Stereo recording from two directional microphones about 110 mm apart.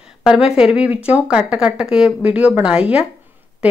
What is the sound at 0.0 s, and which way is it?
Speech, 5° right (ahead or behind).